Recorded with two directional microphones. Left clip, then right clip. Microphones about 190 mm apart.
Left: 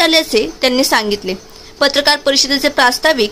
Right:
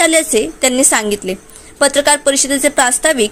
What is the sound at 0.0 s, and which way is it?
A woman's voice, 10° right (ahead or behind).